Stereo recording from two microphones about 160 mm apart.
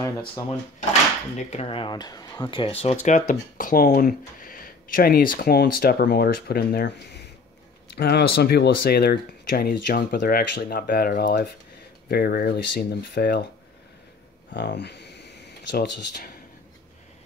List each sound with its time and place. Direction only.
1.5 s speech: 40° left (ahead or behind)
3.3 s speech: 60° left (ahead or behind); by 13.5 s 90° left
14.5 s a sound: 90° left